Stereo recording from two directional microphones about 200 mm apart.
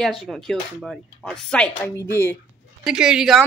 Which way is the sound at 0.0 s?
Centre (ahead or behind).